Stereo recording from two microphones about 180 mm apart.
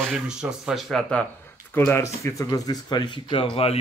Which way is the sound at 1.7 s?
15° left (ahead or behind).